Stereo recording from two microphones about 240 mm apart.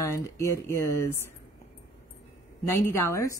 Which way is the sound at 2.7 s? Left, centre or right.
Centre.